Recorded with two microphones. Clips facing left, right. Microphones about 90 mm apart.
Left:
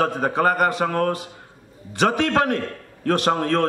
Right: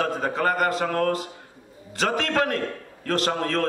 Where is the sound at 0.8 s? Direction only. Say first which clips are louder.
Left 3 dB; 40° left (ahead or behind).